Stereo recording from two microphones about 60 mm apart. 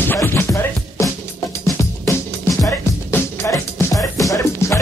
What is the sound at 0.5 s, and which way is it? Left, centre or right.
Music, left.